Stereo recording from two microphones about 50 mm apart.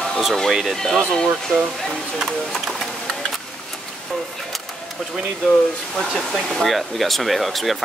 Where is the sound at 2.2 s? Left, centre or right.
Centre.